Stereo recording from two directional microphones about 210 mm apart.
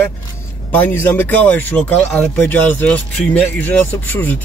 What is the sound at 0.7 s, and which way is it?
Speech, 10° left (ahead or behind).